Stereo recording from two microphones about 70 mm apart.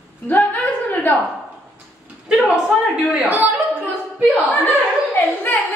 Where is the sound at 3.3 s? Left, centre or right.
Right.